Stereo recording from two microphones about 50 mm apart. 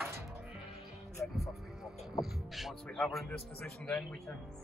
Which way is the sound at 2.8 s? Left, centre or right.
Centre.